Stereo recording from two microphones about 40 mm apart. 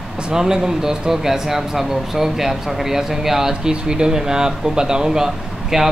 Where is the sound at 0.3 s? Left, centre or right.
Centre.